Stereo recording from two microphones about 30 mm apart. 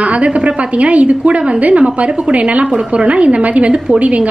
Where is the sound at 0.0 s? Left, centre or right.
Right.